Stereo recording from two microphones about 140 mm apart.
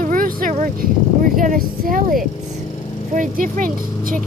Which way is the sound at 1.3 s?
85° right.